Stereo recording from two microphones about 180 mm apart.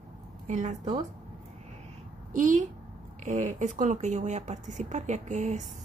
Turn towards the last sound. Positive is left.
turn(degrees=-40)  # may be behind; listen again after turning